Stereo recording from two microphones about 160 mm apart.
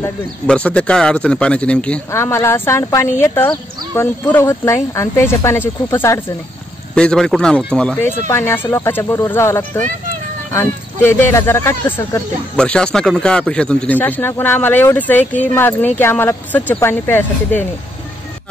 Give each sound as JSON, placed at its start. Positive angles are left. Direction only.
{"t": 0.5, "sound": "speech", "side_deg": 5}
{"t": 7.0, "sound": "speech", "side_deg": 5}
{"t": 12.5, "sound": "speech", "side_deg": 5}